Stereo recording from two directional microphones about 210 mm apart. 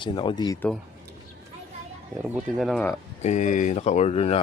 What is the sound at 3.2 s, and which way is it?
Speech, 35° left (ahead or behind).